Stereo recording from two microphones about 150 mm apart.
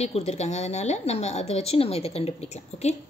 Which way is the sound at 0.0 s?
45° left (ahead or behind).